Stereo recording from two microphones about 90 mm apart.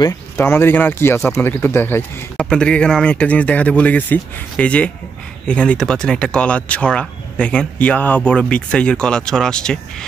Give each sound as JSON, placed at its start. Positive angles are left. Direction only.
{"t": 0.4, "sound": "speech", "side_deg": 25}
{"t": 2.3, "sound": "speech", "side_deg": 10}